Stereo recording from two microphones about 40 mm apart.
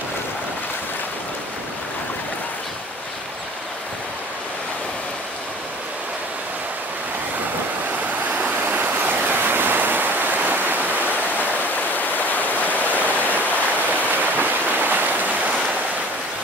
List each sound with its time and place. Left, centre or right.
8.3 s stream: right
8.7 s waves: right
12.0 s stream: left
14.1 s a sound: right